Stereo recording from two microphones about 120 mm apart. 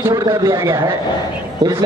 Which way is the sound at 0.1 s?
30° right (ahead or behind).